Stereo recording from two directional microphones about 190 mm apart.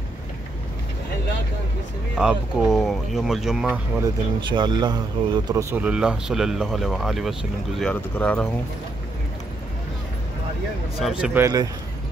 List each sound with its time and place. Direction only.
2.1 s speech: 5° right (ahead or behind)
4.0 s speech: 25° right (ahead or behind); by 8.5 s 10° left (ahead or behind)
11.0 s speech: 5° right (ahead or behind)